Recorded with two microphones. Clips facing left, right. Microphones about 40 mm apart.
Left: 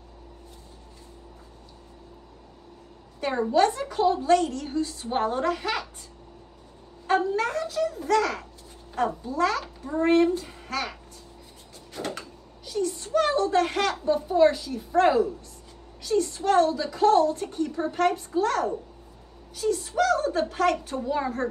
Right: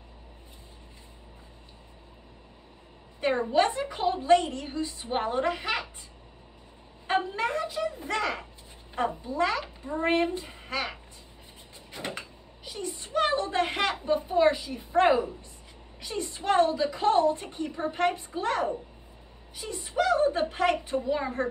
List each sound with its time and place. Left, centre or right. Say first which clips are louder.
3.2 s a woman's voice: left 2 dB; right
7.1 s a sound: left 3 dB; right
8.9 s a child's voice: left 2 dB; right